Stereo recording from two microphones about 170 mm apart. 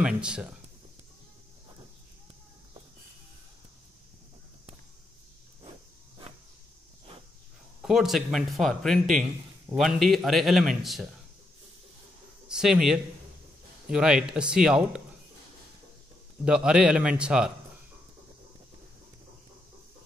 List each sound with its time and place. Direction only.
0.0 s speech: 5° right (ahead or behind)
5.6 s a sound: 30° right (ahead or behind)
7.8 s speech: centre (ahead or behind)
12.4 s speech: 5° right (ahead or behind)
16.4 s speech: 5° right (ahead or behind)